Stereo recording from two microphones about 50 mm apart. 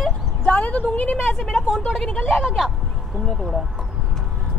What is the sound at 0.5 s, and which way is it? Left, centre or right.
Speech, left.